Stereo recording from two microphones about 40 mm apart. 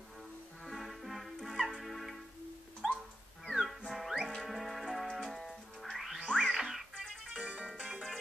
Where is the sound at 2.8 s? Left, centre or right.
Centre.